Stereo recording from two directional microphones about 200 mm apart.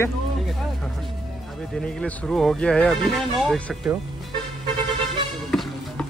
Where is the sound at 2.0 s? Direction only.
5° left (ahead or behind).